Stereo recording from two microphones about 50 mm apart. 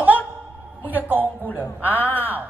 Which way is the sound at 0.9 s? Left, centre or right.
Right.